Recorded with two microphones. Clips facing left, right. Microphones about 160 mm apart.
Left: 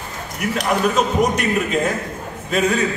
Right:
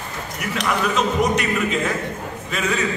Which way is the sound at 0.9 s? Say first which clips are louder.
Left 1 dB; 45° left (ahead or behind).